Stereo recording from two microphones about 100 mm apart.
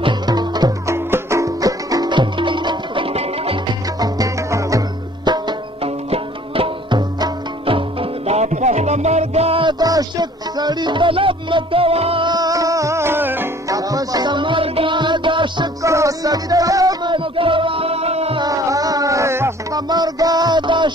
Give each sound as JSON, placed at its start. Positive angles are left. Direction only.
{"t": 0.3, "sound": "music", "side_deg": -45}
{"t": 0.8, "sound": "music", "side_deg": -25}
{"t": 4.0, "sound": "music", "side_deg": -35}
{"t": 5.2, "sound": "music", "side_deg": -45}
{"t": 6.0, "sound": "music", "side_deg": -70}
{"t": 9.7, "sound": "music", "side_deg": -40}
{"t": 12.3, "sound": "music", "side_deg": -40}
{"t": 13.7, "sound": "music", "side_deg": -35}
{"t": 15.8, "sound": "music", "side_deg": -30}
{"t": 17.1, "sound": "music", "side_deg": -60}
{"t": 18.4, "sound": "music", "side_deg": -35}
{"t": 19.9, "sound": "music", "side_deg": -40}